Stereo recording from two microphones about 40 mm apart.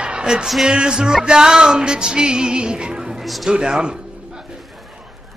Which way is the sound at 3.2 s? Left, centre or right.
Centre.